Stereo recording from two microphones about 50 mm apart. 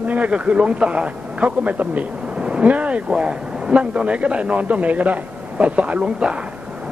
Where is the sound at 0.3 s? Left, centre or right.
Right.